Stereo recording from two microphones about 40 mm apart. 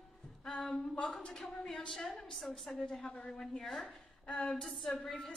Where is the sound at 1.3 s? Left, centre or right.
Centre.